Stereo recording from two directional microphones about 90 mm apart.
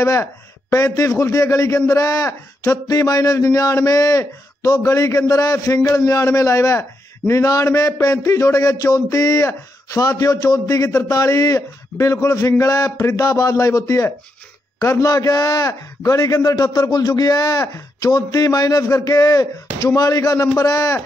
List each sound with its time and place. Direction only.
0.0 s a man's voice: 35° left (ahead or behind)